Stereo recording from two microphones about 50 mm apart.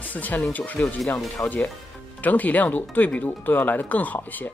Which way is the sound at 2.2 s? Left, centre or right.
Left.